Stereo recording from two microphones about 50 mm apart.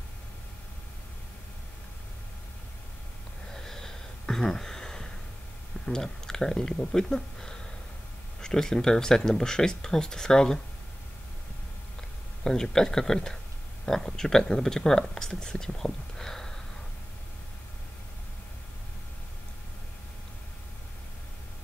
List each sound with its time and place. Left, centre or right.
3.5 s a sound: centre
5.9 s speech: centre
12.4 s speech: centre